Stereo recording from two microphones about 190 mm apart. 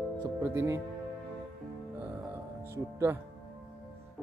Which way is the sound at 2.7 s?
15° right (ahead or behind).